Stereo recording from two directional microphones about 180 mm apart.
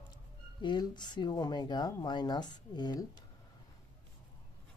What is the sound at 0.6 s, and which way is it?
Speech, 25° left (ahead or behind).